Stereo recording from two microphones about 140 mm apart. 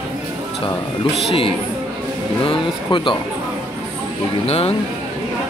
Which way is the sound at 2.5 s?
35° left (ahead or behind).